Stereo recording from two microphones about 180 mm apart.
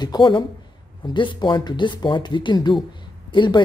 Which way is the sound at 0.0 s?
25° left (ahead or behind).